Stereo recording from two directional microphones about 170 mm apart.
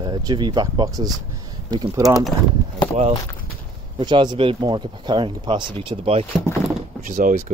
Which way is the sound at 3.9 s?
30° right (ahead or behind).